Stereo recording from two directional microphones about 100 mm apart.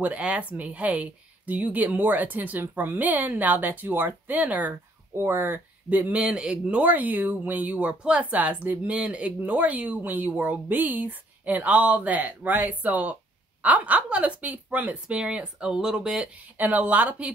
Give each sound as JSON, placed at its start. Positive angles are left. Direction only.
{"t": 0.0, "sound": "speech", "side_deg": -15}